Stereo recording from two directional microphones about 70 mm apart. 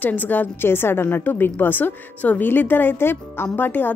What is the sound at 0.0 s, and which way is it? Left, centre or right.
A woman's voice, left.